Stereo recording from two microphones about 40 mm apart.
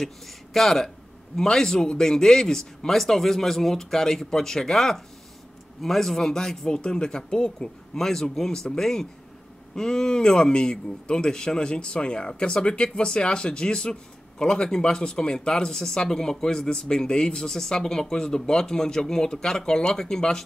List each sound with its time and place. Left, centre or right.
0.0 s a man's voice: centre